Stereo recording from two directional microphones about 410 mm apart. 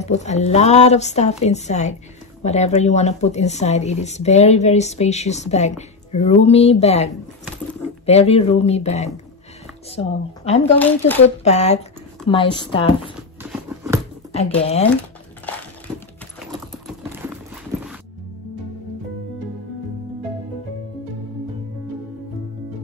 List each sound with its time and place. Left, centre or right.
0.0 s speech: centre
10.4 s speech: centre
10.8 s speech: centre
11.2 s speech: centre
13.4 s a sound: centre
14.3 s speech: centre
16.5 s typing: centre